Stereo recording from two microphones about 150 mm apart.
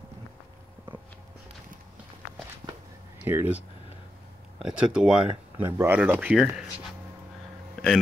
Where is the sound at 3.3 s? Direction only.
10° right (ahead or behind).